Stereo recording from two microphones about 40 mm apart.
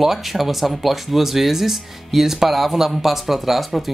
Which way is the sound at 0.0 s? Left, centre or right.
Centre.